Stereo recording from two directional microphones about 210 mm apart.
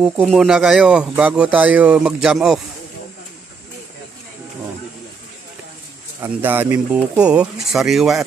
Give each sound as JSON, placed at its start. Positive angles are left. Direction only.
{"t": 0.0, "sound": "speech", "side_deg": 0}
{"t": 6.2, "sound": "speech", "side_deg": -10}